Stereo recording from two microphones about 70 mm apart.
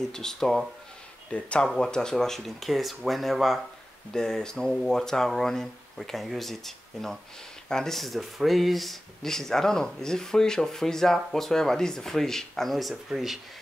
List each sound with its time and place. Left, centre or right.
0.0 s speech: centre
1.3 s speech: centre